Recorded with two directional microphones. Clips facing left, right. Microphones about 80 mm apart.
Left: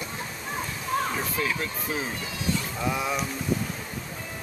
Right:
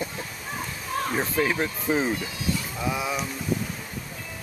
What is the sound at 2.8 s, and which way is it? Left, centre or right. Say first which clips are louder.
Speech: left 1 dB; centre.